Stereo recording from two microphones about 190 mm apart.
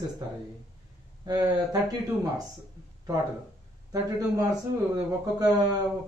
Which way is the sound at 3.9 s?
20° right (ahead or behind).